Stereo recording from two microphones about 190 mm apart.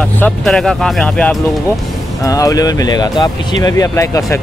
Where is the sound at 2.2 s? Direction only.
15° left (ahead or behind).